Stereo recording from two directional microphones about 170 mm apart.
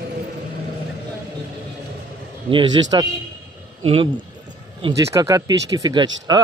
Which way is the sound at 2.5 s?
25° right (ahead or behind).